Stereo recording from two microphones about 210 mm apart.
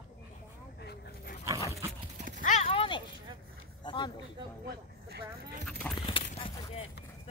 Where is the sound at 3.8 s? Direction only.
20° left (ahead or behind).